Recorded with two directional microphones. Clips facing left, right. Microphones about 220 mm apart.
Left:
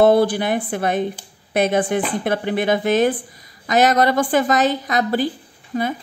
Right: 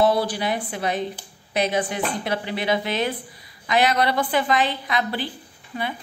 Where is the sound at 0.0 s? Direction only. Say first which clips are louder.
Left 6 dB; 55° left (ahead or behind).